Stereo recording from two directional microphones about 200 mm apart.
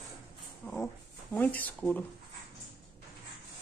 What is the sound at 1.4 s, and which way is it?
Speech, 10° left (ahead or behind).